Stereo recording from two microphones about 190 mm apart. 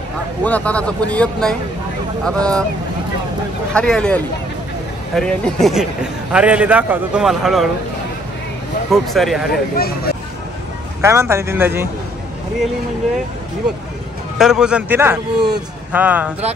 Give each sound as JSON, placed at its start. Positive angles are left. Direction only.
{"t": 0.4, "sound": "speech", "side_deg": 5}
{"t": 3.7, "sound": "a man's voice", "side_deg": 5}
{"t": 8.9, "sound": "speech", "side_deg": 0}
{"t": 9.5, "sound": "speech", "side_deg": 55}
{"t": 11.0, "sound": "a man's voice", "side_deg": -15}
{"t": 14.4, "sound": "a man's voice", "side_deg": -5}